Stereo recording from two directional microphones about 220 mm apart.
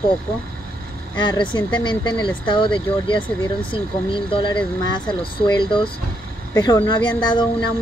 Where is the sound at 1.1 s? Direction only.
20° left (ahead or behind).